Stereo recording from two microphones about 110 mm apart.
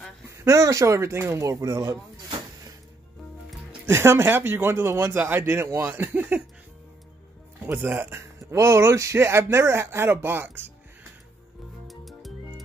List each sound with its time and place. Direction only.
0.3 s speech: 30° right (ahead or behind)
3.8 s speech: 20° right (ahead or behind)
7.6 s speech: 20° right (ahead or behind)
11.9 s music: centre (ahead or behind)